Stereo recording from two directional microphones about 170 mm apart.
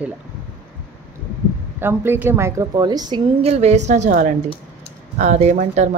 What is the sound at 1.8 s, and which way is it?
A woman's voice, 15° right (ahead or behind).